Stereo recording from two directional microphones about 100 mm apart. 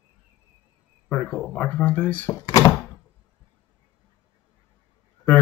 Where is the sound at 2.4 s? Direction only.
40° left (ahead or behind).